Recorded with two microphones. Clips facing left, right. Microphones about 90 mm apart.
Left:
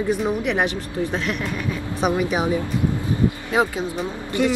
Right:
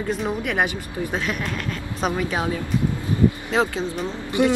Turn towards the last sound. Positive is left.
turn(degrees=-20)  # may be behind; listen again after turning